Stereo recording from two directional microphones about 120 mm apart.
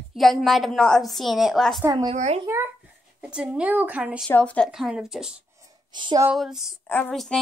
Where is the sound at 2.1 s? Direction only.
70° right (ahead or behind).